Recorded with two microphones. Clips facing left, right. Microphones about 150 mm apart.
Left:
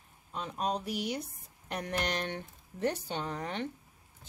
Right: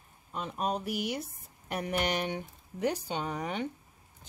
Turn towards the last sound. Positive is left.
turn(degrees=-10)  # may be behind; listen again after turning